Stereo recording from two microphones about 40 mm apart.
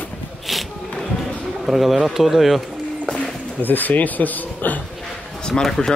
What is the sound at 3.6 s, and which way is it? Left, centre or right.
Speech, left.